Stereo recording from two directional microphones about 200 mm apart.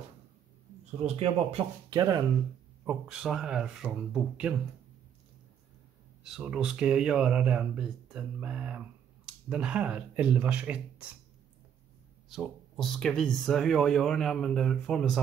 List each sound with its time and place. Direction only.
1.0 s speech: 30° right (ahead or behind)
1.9 s speech: 20° right (ahead or behind)
2.8 s speech: 5° right (ahead or behind)
6.2 s speech: 5° right (ahead or behind)
12.3 s speech: centre (ahead or behind)